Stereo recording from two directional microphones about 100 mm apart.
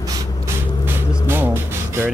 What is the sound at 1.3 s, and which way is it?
Music, 20° right (ahead or behind).